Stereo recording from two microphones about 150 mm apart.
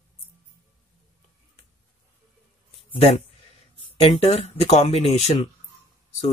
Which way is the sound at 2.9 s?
45° left (ahead or behind).